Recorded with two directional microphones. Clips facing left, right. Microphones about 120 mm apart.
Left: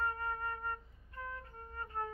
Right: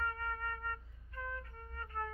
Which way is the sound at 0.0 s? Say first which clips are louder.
Left 2 dB; 25° left (ahead or behind).